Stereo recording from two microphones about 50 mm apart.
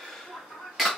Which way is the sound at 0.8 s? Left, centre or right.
Centre.